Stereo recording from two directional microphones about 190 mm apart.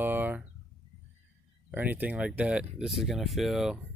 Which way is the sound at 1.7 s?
10° right (ahead or behind).